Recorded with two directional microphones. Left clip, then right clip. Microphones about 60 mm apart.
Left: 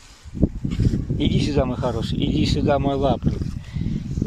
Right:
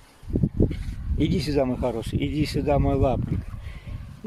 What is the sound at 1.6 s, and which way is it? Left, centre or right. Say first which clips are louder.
Speech: even; centre.